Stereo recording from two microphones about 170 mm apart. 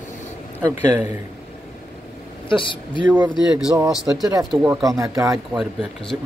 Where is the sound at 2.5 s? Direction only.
30° left (ahead or behind).